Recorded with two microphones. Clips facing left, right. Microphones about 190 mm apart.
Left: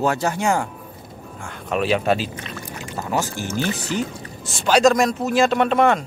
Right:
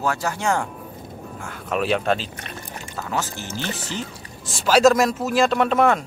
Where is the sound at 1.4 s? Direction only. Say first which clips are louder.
Left 2 dB; centre (ahead or behind).